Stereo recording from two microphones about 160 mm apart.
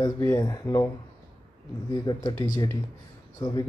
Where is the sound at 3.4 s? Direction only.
25° left (ahead or behind).